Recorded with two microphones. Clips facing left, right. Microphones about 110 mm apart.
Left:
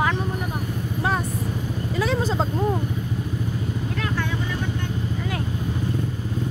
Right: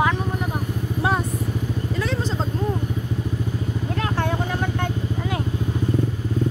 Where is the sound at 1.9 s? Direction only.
10° left (ahead or behind).